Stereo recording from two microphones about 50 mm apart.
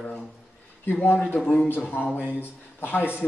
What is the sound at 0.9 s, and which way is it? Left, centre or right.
A man's voice, left.